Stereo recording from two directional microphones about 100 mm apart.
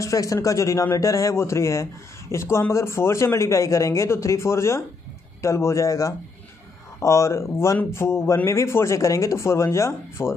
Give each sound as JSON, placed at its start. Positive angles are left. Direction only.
{"t": 0.0, "sound": "a man's voice", "side_deg": 35}